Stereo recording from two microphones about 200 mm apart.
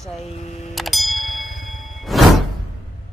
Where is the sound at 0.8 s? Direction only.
Centre (ahead or behind).